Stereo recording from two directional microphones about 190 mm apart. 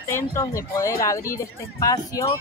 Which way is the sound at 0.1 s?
15° left (ahead or behind).